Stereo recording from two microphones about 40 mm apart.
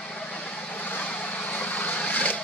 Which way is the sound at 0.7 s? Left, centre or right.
Left.